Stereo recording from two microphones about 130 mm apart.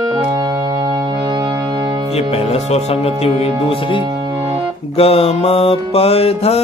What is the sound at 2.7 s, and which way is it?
Music, 55° left (ahead or behind).